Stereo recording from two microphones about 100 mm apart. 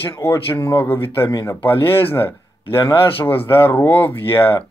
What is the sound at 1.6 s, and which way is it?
Speech, 20° left (ahead or behind).